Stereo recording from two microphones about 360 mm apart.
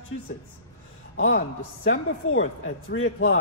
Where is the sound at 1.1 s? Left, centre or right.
Left.